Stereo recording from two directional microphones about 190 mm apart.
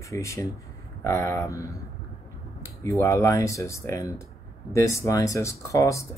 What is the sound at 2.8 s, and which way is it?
Speech, 15° left (ahead or behind).